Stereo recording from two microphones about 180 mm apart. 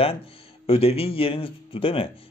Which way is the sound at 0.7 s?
30° left (ahead or behind).